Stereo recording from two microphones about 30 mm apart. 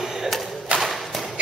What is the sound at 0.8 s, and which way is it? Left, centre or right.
Whip, centre.